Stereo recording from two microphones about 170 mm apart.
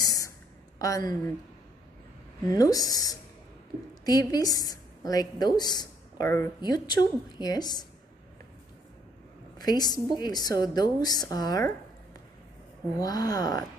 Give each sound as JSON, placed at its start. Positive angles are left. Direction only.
{"t": 0.0, "sound": "a sound", "side_deg": 20}
{"t": 0.7, "sound": "speech", "side_deg": 20}
{"t": 2.5, "sound": "a woman's voice", "side_deg": 20}
{"t": 9.6, "sound": "a woman's voice", "side_deg": 25}
{"t": 13.0, "sound": "a woman's voice", "side_deg": 20}